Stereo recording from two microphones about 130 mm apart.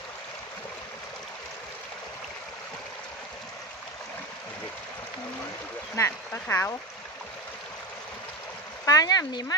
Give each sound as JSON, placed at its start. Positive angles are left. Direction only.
{"t": 5.9, "sound": "speech", "side_deg": 15}
{"t": 8.8, "sound": "speech", "side_deg": 30}